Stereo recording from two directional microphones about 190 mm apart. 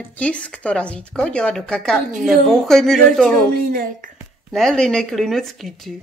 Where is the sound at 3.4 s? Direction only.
50° right (ahead or behind).